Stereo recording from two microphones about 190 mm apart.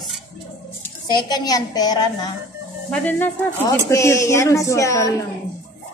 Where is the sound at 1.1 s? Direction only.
20° left (ahead or behind).